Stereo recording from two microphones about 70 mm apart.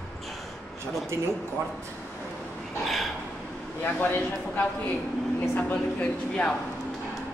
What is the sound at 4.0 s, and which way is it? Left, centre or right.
A man's voice, left.